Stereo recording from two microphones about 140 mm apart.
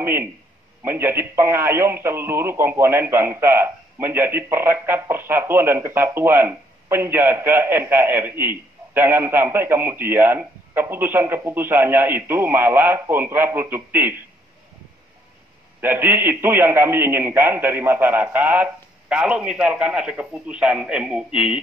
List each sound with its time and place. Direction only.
0.0 s a man's voice: 15° right (ahead or behind)
15.8 s speech: 15° right (ahead or behind)